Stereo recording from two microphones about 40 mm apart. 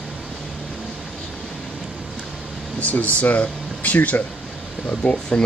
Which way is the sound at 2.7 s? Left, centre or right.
Left.